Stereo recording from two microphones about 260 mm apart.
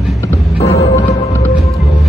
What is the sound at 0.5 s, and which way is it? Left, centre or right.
Music, left.